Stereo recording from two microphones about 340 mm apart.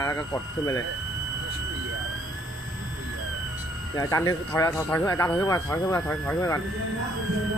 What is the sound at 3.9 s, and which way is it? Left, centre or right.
Speech, centre.